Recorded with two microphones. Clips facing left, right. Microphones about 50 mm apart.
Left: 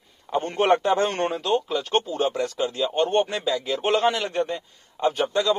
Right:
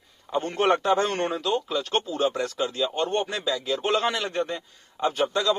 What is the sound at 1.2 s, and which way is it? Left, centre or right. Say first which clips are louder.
Speech: left 2 dB; centre.